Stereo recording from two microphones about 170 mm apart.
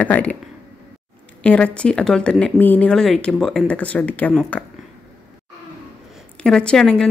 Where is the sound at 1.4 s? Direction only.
5° left (ahead or behind).